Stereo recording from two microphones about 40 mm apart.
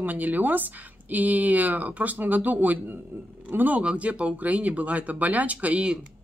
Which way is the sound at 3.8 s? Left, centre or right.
Right.